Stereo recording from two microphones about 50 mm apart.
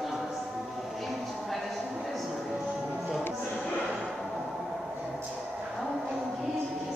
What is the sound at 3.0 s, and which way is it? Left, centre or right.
Music, centre.